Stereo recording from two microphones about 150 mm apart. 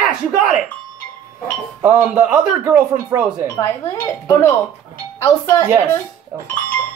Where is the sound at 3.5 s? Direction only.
15° left (ahead or behind).